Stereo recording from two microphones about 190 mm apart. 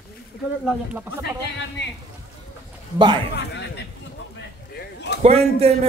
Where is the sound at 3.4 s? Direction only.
65° left (ahead or behind).